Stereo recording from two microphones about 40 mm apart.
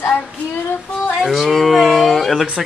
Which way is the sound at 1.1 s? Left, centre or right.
Centre.